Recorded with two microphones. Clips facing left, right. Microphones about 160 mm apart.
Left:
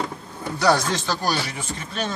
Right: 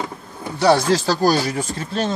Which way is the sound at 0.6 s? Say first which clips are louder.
Right 5 dB; 30° right (ahead or behind).